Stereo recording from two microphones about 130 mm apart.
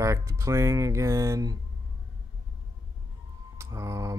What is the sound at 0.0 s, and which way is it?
Speech, 25° right (ahead or behind).